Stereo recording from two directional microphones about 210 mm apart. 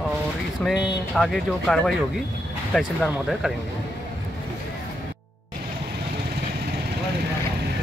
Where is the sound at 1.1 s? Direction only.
Centre (ahead or behind).